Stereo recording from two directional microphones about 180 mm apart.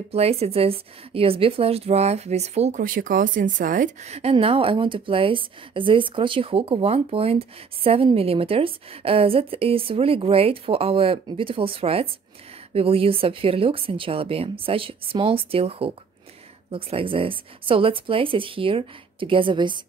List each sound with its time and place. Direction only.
0.1 s a woman's voice: 35° right (ahead or behind)